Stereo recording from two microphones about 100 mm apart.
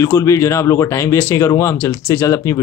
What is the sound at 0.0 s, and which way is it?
Speech, 30° left (ahead or behind).